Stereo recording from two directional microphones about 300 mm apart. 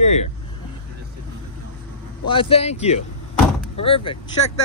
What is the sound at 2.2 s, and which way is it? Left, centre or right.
Speech, centre.